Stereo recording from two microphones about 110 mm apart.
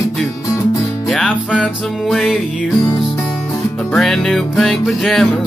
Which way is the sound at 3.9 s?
5° left (ahead or behind).